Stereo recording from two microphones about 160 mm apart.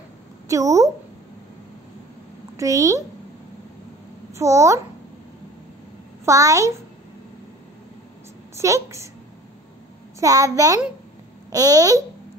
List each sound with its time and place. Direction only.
0.5 s speech: 20° right (ahead or behind)
2.5 s a child's voice: 20° right (ahead or behind)
4.4 s a child's voice: 20° right (ahead or behind)
6.2 s a child's voice: 20° right (ahead or behind)
8.5 s a woman's voice: 20° right (ahead or behind)
10.2 s a child's voice: 20° right (ahead or behind)